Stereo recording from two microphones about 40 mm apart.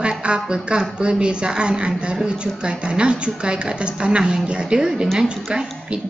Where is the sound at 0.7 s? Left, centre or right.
Right.